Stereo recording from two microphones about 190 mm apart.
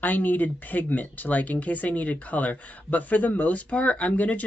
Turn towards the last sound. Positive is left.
turn(degrees=5)  # may be behind; listen again after turning